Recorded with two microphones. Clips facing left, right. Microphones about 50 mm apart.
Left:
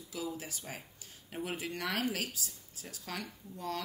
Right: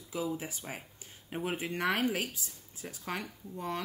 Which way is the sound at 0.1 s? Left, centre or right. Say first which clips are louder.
Right 5 dB; right.